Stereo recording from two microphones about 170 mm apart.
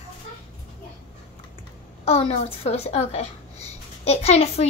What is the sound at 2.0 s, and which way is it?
A child's voice, 35° left (ahead or behind).